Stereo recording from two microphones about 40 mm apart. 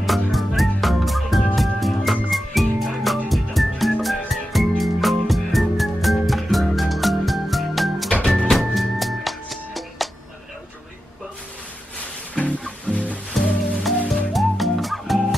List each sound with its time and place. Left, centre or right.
0.0 s music: centre
12.4 s music: left
14.3 s music: centre